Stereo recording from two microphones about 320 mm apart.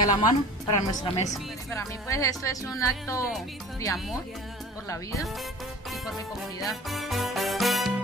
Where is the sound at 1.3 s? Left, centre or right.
Centre.